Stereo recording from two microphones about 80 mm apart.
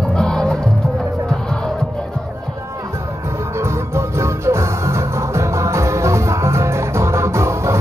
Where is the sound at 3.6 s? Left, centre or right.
Right.